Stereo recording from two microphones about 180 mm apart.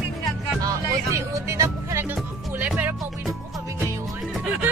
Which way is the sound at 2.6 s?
10° right (ahead or behind).